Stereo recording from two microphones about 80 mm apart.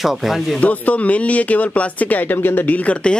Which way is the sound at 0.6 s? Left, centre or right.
Left.